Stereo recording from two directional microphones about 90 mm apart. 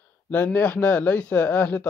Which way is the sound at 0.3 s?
20° left (ahead or behind).